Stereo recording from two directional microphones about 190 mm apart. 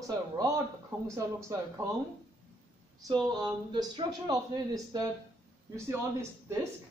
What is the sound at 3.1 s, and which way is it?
Speech, 20° right (ahead or behind).